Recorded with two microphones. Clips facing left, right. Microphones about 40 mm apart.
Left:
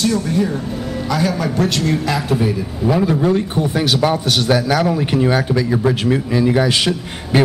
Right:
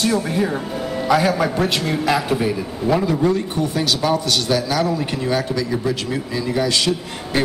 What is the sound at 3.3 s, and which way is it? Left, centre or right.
A man's voice, left.